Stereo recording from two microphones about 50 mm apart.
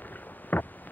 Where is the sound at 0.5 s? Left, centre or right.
Left.